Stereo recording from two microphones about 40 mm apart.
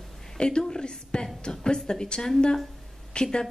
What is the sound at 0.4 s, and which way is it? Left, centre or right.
A woman's voice, left.